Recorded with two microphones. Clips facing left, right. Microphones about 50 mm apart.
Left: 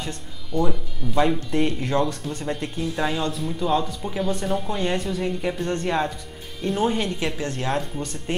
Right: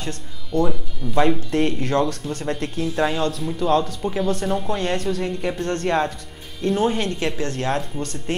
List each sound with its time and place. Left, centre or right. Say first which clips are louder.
0.5 s speech: right 3 dB; centre
1.5 s speech: right 2 dB; centre
8.0 s speech: right 2 dB; centre